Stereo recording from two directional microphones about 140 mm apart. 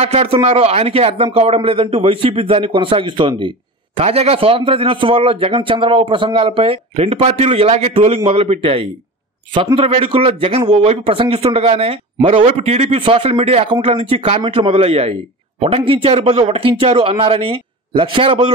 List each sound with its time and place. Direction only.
0.0 s a man's voice: 50° right (ahead or behind)